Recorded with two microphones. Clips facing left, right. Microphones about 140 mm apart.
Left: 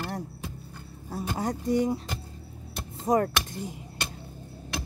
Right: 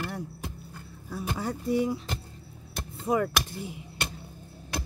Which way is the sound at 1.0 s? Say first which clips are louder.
Left 2 dB; 40° left (ahead or behind).